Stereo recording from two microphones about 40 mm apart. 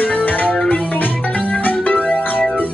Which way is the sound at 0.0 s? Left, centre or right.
Left.